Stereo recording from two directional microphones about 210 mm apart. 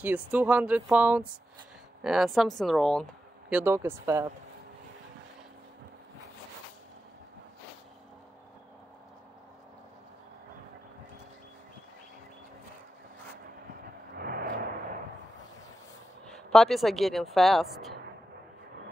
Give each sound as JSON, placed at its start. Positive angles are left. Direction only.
{"t": 0.0, "sound": "speech", "side_deg": -10}
{"t": 14.1, "sound": "vehicle", "side_deg": -45}
{"t": 16.3, "sound": "speech", "side_deg": 0}